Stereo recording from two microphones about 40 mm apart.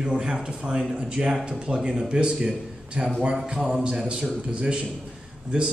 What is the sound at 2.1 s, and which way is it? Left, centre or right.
A man's voice, right.